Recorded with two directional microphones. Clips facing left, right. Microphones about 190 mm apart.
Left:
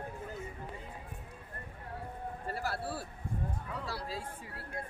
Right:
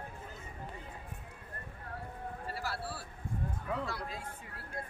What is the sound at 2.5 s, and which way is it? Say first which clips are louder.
Speech: left 4 dB; 50° left (ahead or behind).